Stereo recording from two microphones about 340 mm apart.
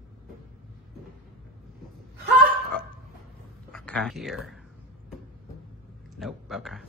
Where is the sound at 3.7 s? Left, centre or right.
Centre.